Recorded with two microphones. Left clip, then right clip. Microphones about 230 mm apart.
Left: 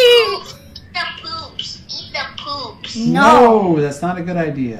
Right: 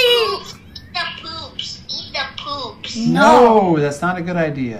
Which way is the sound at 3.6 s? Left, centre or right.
Centre.